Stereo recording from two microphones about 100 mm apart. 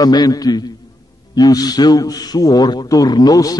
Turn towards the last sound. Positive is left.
turn(degrees=40)  # may be behind; listen again after turning